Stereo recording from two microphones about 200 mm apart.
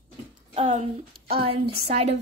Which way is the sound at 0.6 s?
30° right (ahead or behind).